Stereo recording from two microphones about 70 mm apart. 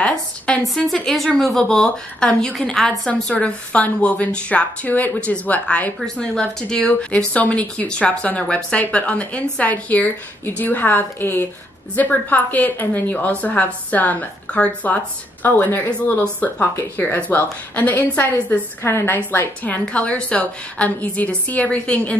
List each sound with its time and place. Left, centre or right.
0.0 s a woman's voice: centre
1.0 s a woman's voice: centre; by 5.9 s left
6.0 s a woman's voice: centre
17.9 s a woman's voice: left
19.6 s a woman's voice: left